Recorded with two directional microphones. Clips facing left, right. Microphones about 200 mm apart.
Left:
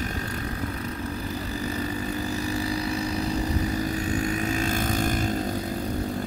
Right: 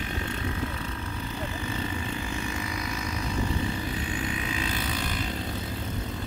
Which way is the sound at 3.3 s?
40° left (ahead or behind).